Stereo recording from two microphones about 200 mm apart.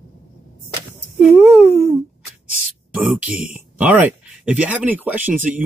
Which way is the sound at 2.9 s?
5° right (ahead or behind).